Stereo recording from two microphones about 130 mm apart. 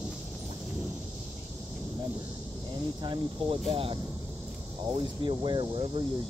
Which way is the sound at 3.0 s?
35° right (ahead or behind).